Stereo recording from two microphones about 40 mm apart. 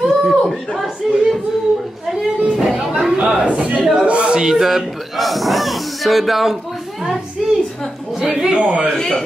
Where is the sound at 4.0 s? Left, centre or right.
Right.